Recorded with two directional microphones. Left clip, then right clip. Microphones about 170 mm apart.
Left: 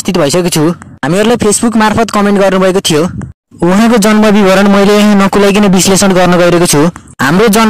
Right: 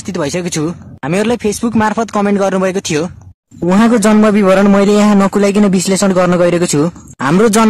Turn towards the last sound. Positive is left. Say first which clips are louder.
# left 3 dB
turn(degrees=35)  # may be behind; listen again after turning